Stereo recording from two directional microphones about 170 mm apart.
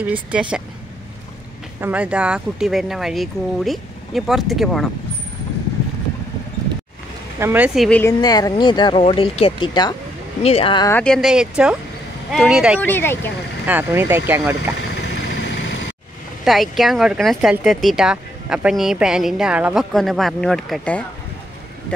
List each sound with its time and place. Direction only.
0.0 s speech: 10° right (ahead or behind)
1.8 s speech: 10° right (ahead or behind)
7.3 s speech: 10° right (ahead or behind)
8.1 s speech: 25° left (ahead or behind)
10.9 s speech: 10° left (ahead or behind)
11.1 s speech: 5° right (ahead or behind)
12.8 s speech: 15° left (ahead or behind)
13.7 s speech: 10° right (ahead or behind)
14.8 s vehicle: 85° left
16.4 s speech: centre (ahead or behind)